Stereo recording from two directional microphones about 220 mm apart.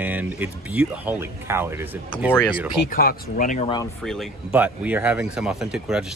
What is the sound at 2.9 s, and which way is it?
Speech, 40° left (ahead or behind).